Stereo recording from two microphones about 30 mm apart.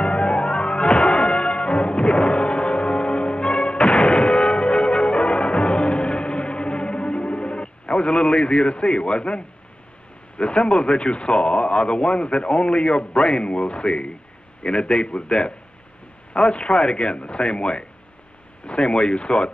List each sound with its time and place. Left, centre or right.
0.0 s music: left
10.3 s a man's voice: left